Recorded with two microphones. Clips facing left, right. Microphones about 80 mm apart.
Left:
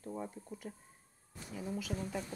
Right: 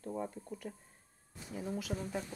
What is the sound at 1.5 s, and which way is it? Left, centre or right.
Speech, right.